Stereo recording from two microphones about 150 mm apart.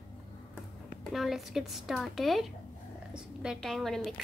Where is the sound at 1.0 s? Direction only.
Centre (ahead or behind).